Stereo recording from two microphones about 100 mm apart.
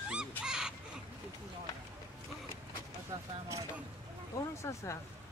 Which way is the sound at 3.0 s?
30° right (ahead or behind).